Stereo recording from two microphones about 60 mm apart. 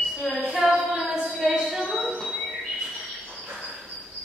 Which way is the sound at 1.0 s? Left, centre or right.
Centre.